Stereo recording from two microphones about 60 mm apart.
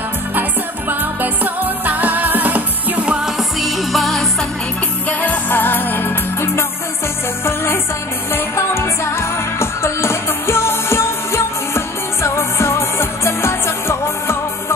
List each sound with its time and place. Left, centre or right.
0.4 s music: right
3.2 s music: centre
5.2 s music: left